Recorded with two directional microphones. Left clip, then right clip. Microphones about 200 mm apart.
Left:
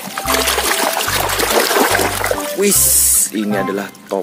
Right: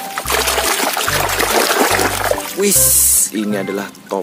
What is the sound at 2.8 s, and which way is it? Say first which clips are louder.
Speech: right 1 dB; 40° left (ahead or behind).